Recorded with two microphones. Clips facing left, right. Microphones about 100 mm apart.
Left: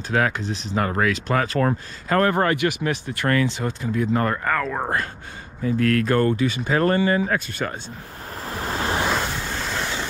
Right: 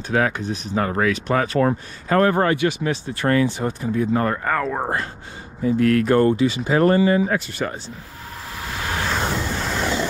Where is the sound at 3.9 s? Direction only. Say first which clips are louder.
Right 1 dB; 35° right (ahead or behind).